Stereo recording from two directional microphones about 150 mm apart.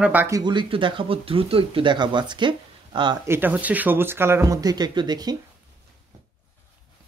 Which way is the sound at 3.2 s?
15° right (ahead or behind).